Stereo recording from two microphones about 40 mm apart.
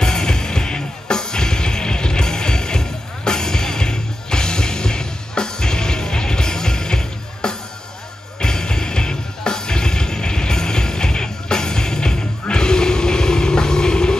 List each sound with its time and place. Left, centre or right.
0.0 s music: centre